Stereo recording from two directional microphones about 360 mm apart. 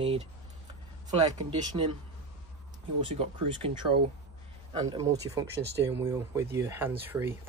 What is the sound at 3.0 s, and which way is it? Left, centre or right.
Speech, centre.